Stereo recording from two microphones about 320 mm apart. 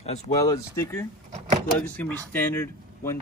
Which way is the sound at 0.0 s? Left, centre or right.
Centre.